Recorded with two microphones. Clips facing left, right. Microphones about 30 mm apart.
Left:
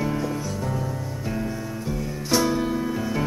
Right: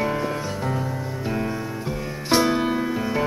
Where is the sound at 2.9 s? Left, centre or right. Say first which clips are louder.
Right 2 dB; right.